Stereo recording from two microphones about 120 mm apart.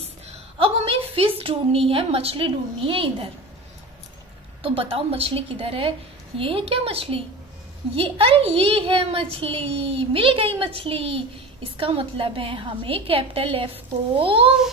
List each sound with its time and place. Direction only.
0.6 s a sound: 50° right (ahead or behind)
1.4 s a woman's voice: 50° right (ahead or behind)
4.6 s a woman's voice: 50° right (ahead or behind)